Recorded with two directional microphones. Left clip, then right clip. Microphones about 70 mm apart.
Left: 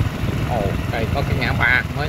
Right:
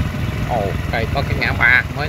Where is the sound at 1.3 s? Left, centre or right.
Centre.